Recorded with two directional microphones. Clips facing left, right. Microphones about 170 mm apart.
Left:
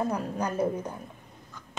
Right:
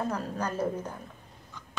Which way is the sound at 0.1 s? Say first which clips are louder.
Left 2 dB; 15° left (ahead or behind).